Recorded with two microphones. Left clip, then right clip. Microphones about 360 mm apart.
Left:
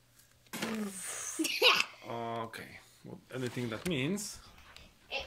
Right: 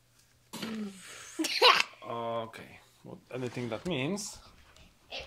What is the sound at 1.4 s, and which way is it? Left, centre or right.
Speech, right.